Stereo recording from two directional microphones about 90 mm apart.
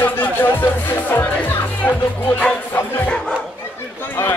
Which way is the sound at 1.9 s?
20° left (ahead or behind).